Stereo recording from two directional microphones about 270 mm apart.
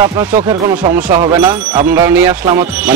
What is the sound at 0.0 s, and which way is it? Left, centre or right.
Speech, centre.